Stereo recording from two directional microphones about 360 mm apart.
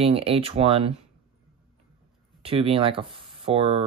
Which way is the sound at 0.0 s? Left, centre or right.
Centre.